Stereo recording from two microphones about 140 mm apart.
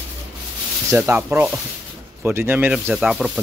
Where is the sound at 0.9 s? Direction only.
15° right (ahead or behind).